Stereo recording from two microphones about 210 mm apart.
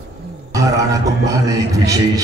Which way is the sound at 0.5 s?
15° right (ahead or behind).